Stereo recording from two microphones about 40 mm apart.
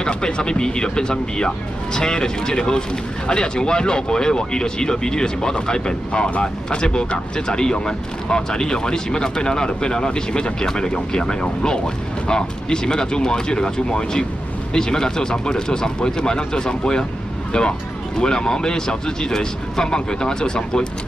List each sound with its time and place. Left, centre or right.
0.0 s speech: left